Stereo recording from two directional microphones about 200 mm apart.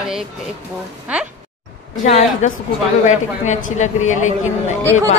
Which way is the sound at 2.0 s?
35° left (ahead or behind).